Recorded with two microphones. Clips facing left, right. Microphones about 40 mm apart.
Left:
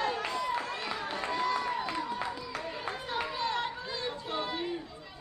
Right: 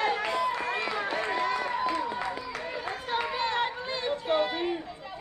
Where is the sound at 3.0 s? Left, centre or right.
Right.